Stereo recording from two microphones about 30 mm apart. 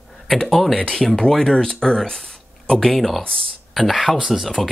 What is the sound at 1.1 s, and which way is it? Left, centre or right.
Speech, centre.